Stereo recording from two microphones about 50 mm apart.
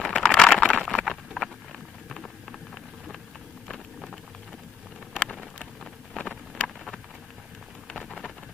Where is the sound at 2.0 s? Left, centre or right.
Centre.